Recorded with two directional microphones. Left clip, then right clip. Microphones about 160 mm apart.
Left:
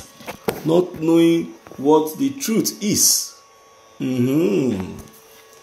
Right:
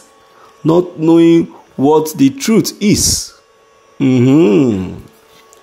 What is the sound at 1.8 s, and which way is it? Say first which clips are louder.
Speech: right 6 dB; 90° right.